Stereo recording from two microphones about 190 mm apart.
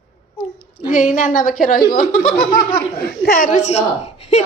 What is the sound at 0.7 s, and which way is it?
A woman's voice, 45° left (ahead or behind).